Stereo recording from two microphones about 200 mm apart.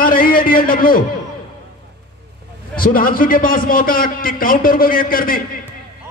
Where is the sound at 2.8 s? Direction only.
45° left (ahead or behind).